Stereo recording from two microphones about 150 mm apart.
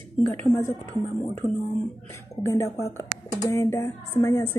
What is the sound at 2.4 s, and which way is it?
A woman's voice, 20° left (ahead or behind).